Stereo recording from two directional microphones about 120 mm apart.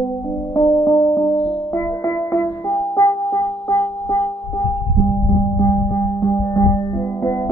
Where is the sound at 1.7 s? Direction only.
20° left (ahead or behind).